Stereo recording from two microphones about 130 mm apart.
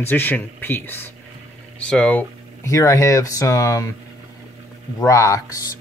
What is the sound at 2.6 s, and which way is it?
Speech, 25° left (ahead or behind).